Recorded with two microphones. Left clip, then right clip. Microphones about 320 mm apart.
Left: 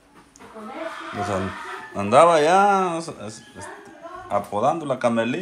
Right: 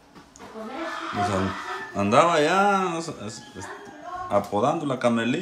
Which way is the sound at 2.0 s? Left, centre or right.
Centre.